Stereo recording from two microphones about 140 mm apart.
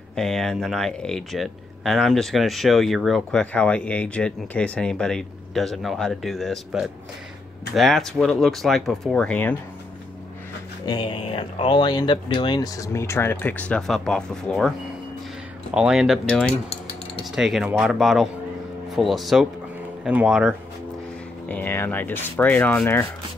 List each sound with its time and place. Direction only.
0.1 s speech: 5° left (ahead or behind)
10.9 s speech: 35° left (ahead or behind); by 14.7 s 5° left (ahead or behind)
15.7 s speech: 5° right (ahead or behind)
21.5 s speech: 15° left (ahead or behind)